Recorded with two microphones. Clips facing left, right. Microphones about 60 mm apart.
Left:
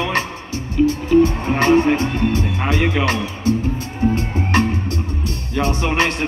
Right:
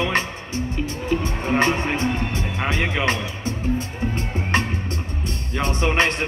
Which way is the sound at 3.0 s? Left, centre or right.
Right.